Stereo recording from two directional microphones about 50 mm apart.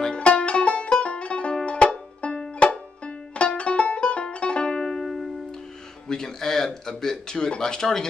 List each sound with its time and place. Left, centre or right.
0.0 s music: left
6.0 s speech: centre